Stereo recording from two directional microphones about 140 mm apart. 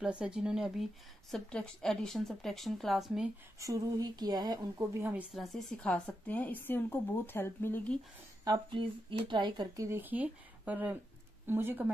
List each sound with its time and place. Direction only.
0.0 s a woman's voice: 5° right (ahead or behind)
3.5 s speech: 25° right (ahead or behind)
5.0 s speech: 10° right (ahead or behind)
5.3 s speech: centre (ahead or behind)
8.5 s speech: 35° right (ahead or behind)
9.8 s speech: 15° right (ahead or behind)